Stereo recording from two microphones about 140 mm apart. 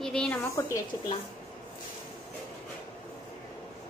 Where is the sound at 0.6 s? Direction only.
20° left (ahead or behind).